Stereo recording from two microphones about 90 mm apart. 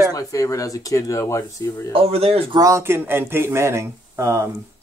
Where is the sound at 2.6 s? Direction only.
30° right (ahead or behind).